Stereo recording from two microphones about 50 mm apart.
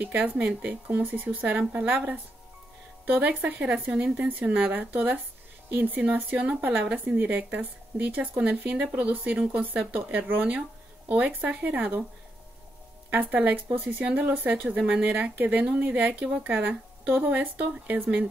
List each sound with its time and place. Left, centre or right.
0.0 s speech: right
3.1 s speech: right
10.0 s speech: right
11.1 s speech: right
13.1 s speech: right
14.7 s speech: right